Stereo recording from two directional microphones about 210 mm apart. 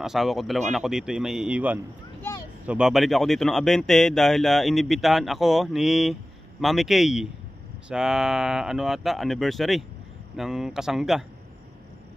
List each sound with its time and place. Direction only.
0.0 s speech: centre (ahead or behind)